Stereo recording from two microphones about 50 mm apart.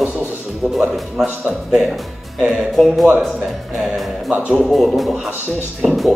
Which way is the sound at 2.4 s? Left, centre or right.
Right.